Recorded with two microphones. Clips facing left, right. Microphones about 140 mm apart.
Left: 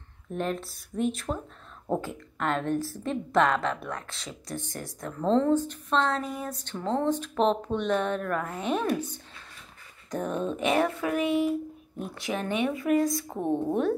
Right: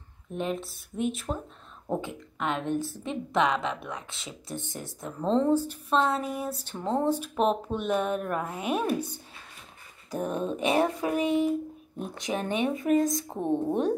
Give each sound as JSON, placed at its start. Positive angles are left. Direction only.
{"t": 0.3, "sound": "a woman's voice", "side_deg": 0}
{"t": 13.4, "sound": "a woman's voice", "side_deg": 10}